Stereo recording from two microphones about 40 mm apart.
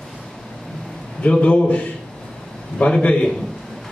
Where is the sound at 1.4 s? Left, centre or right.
Left.